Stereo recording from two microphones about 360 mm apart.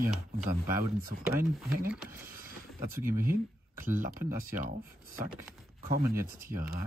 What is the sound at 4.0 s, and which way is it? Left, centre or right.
Speech, right.